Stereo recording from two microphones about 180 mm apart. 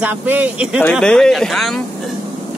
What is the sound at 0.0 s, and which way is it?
Speech, 10° right (ahead or behind).